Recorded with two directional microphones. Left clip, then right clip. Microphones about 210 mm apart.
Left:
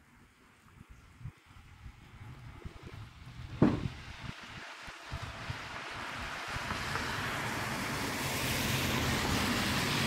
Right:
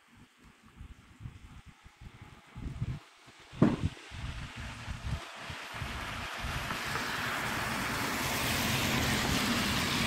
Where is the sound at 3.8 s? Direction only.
20° right (ahead or behind); by 10.1 s 45° right (ahead or behind).